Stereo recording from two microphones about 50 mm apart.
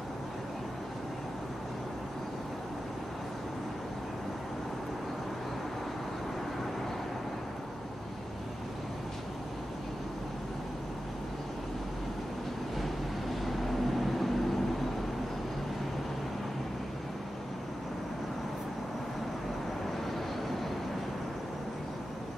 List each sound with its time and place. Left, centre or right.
12.7 s vehicle: centre